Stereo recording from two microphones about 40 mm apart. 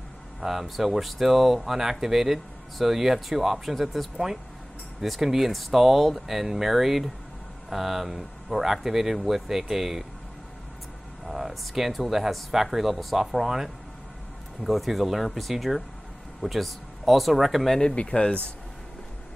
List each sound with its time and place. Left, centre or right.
0.4 s speech: centre
5.2 s speech: centre
11.2 s a sound: centre
12.0 s speech: centre
17.7 s speech: left